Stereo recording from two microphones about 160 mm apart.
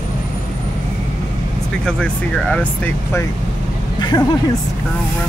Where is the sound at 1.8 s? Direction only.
5° left (ahead or behind).